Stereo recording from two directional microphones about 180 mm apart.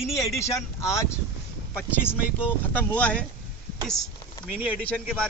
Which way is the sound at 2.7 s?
10° left (ahead or behind).